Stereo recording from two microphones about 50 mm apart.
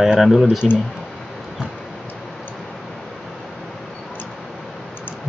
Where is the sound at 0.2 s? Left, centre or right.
Centre.